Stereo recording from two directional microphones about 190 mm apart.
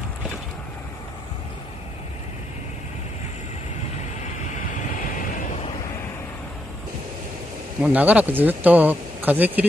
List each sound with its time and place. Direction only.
4.2 s vehicle: 40° left (ahead or behind)
7.8 s speech: 10° right (ahead or behind)